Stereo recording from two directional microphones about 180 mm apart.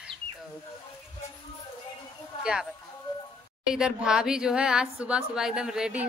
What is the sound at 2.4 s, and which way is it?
A woman's voice, 5° right (ahead or behind).